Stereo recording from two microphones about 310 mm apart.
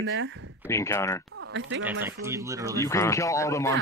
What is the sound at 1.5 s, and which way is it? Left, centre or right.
Speech, right.